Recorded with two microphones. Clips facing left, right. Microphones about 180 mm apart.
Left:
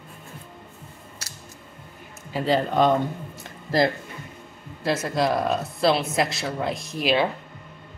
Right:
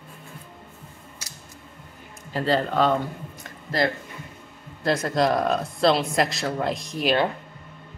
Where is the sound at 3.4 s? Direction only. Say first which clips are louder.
Left 4 dB; 30° left (ahead or behind).